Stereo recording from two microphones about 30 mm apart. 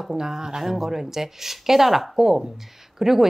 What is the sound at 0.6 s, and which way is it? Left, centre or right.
Speech, centre.